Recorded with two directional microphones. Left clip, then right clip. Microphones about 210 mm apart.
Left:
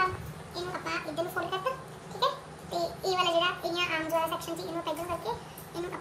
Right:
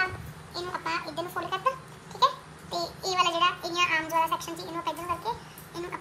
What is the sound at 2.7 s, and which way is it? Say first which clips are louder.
Child singing: right 2 dB; 35° right (ahead or behind).